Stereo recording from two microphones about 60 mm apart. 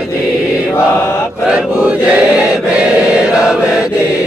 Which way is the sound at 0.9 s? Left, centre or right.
Left.